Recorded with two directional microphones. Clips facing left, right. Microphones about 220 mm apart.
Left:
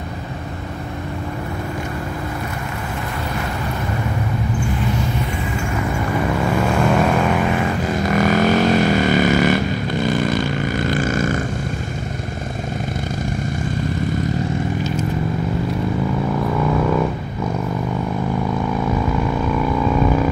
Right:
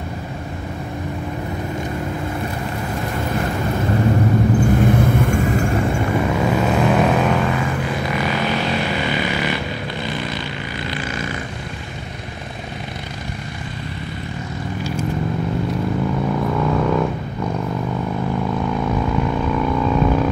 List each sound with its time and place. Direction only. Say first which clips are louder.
4.7 s vehicle: right 6 dB; 50° right (ahead or behind)
6.5 s vehicle: even; 5° right (ahead or behind)
7.8 s vehicle: left 4 dB; 45° left (ahead or behind)
16.4 s vehicle: left 1 dB; centre (ahead or behind)
18.7 s vehicle: even; centre (ahead or behind)